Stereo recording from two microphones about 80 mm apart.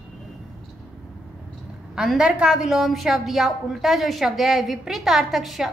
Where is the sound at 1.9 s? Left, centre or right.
Centre.